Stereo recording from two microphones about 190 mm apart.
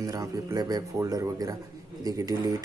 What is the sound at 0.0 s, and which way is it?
Speech, 20° right (ahead or behind).